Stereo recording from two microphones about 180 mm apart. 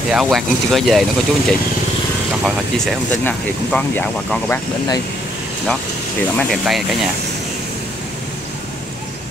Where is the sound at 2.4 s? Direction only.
Centre (ahead or behind).